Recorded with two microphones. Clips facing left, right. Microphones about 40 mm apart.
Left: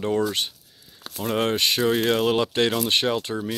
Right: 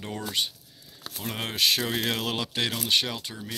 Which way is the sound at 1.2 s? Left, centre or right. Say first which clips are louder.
Left 5 dB; centre.